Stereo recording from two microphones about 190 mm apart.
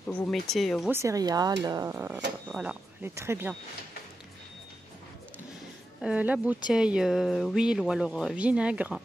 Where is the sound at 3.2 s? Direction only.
10° right (ahead or behind).